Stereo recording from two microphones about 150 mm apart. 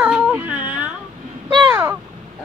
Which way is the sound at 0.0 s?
10° right (ahead or behind).